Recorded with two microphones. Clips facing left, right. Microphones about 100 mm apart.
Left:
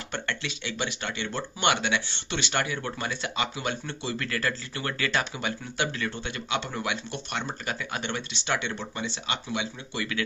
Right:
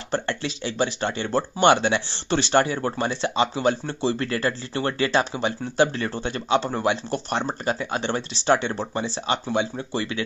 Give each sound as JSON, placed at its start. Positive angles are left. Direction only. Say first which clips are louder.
{"t": 0.1, "sound": "speech", "louder": "right 8 dB", "side_deg": -35}